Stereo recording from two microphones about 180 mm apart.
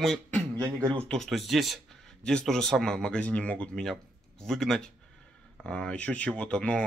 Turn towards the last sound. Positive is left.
turn(degrees=5)  # may be behind; listen again after turning